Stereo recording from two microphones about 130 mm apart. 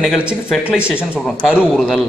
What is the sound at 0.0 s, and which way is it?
A man's voice, 5° right (ahead or behind).